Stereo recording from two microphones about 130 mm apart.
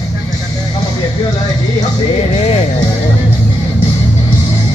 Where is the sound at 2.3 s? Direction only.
55° left (ahead or behind).